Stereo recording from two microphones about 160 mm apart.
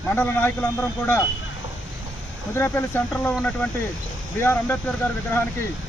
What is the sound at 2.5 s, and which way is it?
Speech, 15° left (ahead or behind).